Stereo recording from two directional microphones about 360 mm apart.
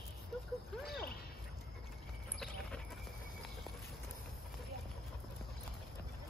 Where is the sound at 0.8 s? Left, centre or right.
Left.